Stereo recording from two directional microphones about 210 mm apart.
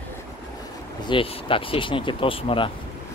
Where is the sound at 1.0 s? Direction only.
25° left (ahead or behind).